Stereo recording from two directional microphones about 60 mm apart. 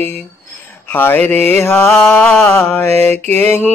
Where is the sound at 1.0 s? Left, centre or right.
Left.